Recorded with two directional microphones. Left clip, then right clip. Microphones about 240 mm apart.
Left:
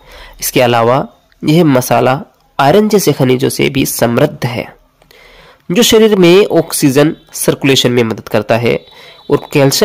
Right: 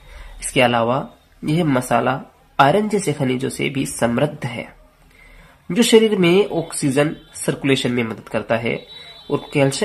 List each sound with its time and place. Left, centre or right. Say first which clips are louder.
0.5 s speech: left 7 dB; left